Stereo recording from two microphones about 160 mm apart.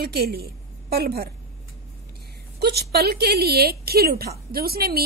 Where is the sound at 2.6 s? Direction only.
90° right; by 5.0 s 70° right (ahead or behind).